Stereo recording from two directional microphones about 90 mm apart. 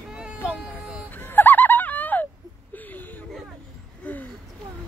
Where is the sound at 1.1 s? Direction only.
20° left (ahead or behind).